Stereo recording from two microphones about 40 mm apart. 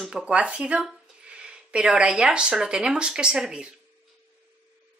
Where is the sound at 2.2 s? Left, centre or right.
Right.